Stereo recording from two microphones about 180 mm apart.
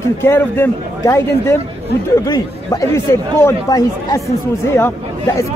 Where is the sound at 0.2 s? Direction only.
10° left (ahead or behind).